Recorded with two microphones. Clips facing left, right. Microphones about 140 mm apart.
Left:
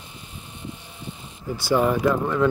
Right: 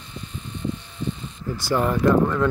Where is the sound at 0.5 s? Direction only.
10° left (ahead or behind).